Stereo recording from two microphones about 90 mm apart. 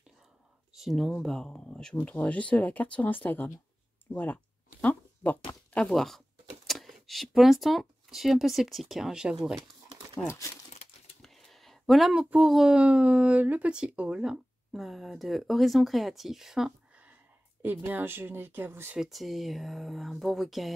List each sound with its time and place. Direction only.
0.7 s speech: centre (ahead or behind); by 4.4 s 20° left (ahead or behind)
4.8 s a sound: 20° left (ahead or behind)
5.9 s speech: 5° left (ahead or behind)
10.1 s speech: 30° left (ahead or behind)
11.2 s speech: centre (ahead or behind)
17.6 s speech: 20° right (ahead or behind)
18.9 s speech: centre (ahead or behind)